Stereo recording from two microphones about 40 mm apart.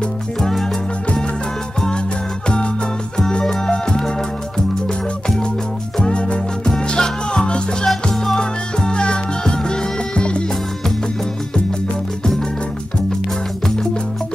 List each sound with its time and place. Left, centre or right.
0.4 s music: centre
2.4 s music: left
5.9 s music: left
7.8 s music: centre
8.4 s music: left